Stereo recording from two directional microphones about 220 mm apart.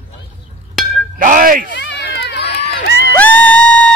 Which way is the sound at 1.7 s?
55° left (ahead or behind).